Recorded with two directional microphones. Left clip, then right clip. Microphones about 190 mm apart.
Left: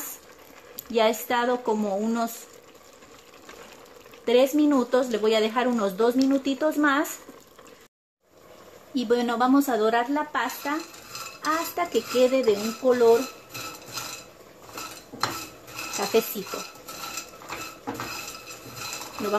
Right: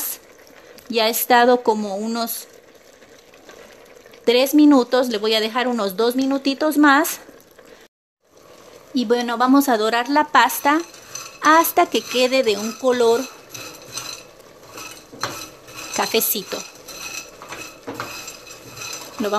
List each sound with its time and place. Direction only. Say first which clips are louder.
0.9 s speech: right 7 dB; 50° right (ahead or behind)
4.2 s speech: right 5 dB; 50° right (ahead or behind)
8.9 s a woman's voice: right 4 dB; 30° right (ahead or behind); by 13.2 s 60° right (ahead or behind)
16.0 s dishes: right 4 dB; 55° right (ahead or behind)